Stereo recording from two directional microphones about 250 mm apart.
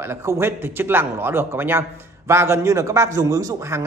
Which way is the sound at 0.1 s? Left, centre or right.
Centre.